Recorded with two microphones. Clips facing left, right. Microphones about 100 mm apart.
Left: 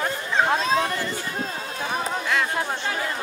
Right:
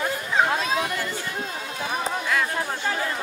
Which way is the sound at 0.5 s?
35° left (ahead or behind).